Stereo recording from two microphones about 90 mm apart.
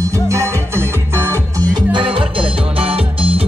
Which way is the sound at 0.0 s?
35° right (ahead or behind).